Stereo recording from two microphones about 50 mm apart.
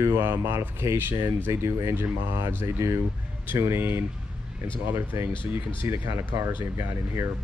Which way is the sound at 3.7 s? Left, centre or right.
Right.